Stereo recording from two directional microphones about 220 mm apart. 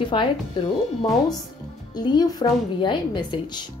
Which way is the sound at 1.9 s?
20° left (ahead or behind).